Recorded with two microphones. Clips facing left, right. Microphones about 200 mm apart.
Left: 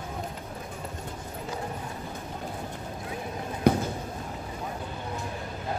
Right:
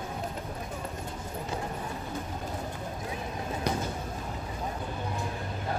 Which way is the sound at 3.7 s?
55° left (ahead or behind).